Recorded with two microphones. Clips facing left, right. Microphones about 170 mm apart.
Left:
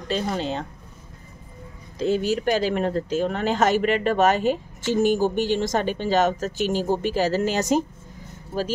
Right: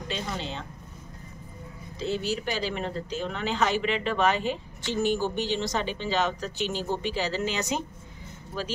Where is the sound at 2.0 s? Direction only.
45° left (ahead or behind).